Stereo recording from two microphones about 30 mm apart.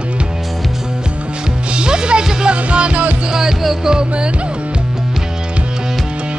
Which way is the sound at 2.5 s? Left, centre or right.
Right.